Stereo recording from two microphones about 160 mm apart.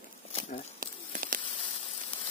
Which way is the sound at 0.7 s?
60° right (ahead or behind).